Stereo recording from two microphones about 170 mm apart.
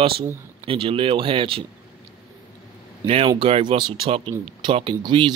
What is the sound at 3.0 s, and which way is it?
Speech, 35° right (ahead or behind).